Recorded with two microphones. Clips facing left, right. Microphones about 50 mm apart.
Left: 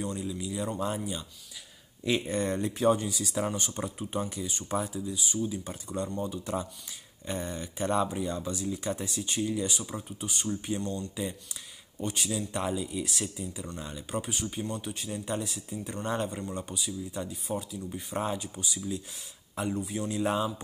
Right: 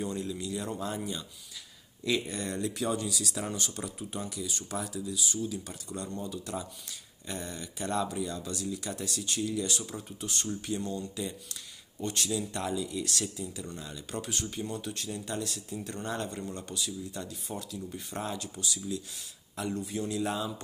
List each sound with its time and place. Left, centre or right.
0.0 s speech: centre
2.0 s speech: left
10.8 s speech: centre
12.0 s speech: centre